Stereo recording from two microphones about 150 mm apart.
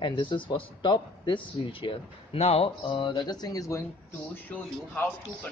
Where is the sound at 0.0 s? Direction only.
35° left (ahead or behind).